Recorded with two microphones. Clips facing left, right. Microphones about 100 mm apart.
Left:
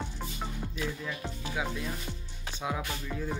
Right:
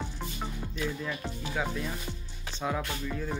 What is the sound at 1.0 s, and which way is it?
Speech, centre (ahead or behind).